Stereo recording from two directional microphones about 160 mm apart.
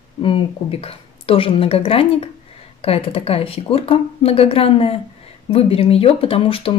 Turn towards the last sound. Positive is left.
turn(degrees=35)  # may be behind; listen again after turning